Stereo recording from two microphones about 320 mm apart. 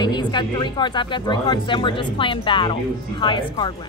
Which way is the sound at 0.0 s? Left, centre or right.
Centre.